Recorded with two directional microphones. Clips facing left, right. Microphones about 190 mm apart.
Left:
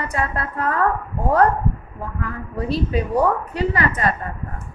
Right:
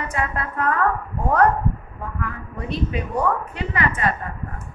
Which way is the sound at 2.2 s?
35° left (ahead or behind).